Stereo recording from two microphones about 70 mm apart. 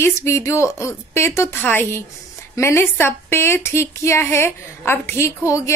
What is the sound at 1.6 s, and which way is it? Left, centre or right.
Speech, left.